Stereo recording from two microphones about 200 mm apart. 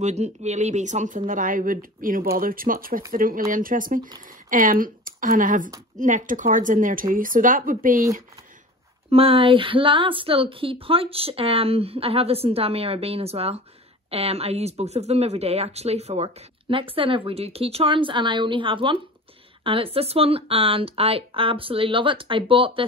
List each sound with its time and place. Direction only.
0.0 s speech: 35° right (ahead or behind)
9.1 s speech: 30° right (ahead or behind)